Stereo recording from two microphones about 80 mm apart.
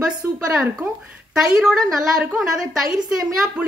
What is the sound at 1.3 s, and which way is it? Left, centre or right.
A woman's voice, centre.